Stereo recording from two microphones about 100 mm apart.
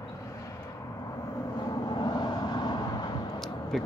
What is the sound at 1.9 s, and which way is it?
Vehicle, 45° left (ahead or behind).